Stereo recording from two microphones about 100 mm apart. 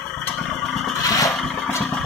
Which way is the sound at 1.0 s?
35° left (ahead or behind).